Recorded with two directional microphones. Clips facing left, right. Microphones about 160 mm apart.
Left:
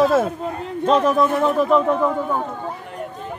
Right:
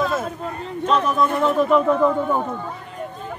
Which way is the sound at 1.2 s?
5° left (ahead or behind).